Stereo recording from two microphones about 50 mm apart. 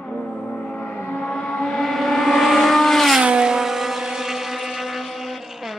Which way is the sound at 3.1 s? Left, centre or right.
Centre.